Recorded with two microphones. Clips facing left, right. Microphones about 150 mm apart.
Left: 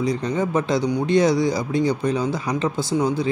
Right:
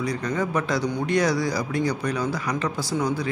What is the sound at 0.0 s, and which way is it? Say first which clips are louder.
Speech: left 4 dB; 25° left (ahead or behind).